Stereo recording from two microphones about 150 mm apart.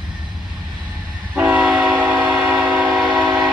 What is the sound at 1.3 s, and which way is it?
Train, 10° right (ahead or behind).